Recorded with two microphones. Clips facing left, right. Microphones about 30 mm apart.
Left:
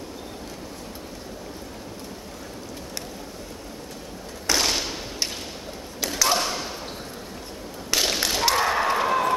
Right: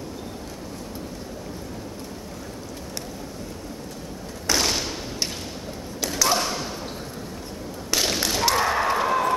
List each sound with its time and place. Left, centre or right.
4.5 s thump: left
5.9 s a sound: left
7.9 s whip: left